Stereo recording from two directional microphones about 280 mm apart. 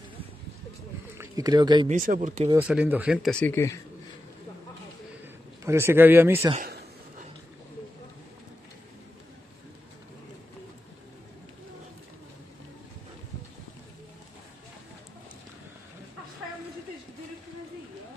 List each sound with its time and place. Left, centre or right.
1.1 s speech: centre
1.9 s speech: right
2.5 s speech: centre
5.7 s speech: centre
6.5 s a sound: right